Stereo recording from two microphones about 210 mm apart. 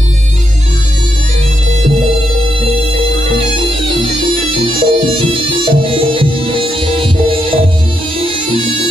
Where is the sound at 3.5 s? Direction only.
25° right (ahead or behind).